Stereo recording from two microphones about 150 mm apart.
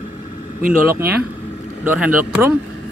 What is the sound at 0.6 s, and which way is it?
Speech, 70° right (ahead or behind).